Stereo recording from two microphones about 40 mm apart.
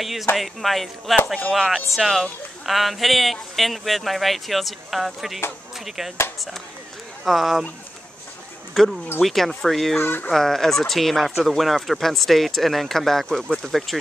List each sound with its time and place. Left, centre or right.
0.0 s speech: centre
7.2 s speech: centre
8.8 s speech: centre
9.9 s speech: left
10.3 s speech: centre